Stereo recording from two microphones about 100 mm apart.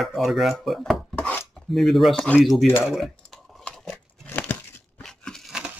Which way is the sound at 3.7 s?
15° left (ahead or behind).